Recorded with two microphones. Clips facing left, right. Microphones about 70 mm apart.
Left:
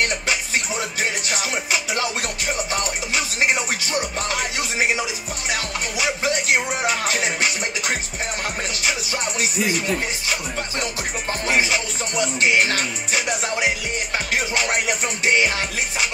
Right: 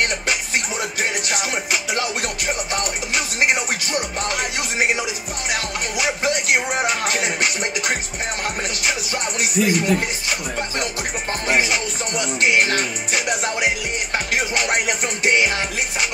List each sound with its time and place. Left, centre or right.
1.3 s music: right
4.3 s music: right
5.9 s speech: right
8.8 s music: right
11.4 s music: right